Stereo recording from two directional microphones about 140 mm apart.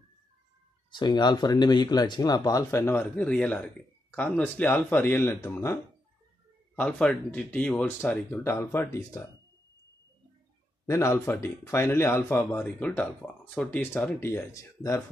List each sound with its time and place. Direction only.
0.9 s speech: 30° left (ahead or behind)
10.9 s speech: 20° left (ahead or behind)